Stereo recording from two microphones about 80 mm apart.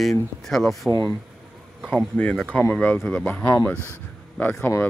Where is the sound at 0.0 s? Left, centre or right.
Centre.